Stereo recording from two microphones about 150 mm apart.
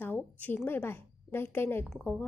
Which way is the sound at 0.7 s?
15° left (ahead or behind).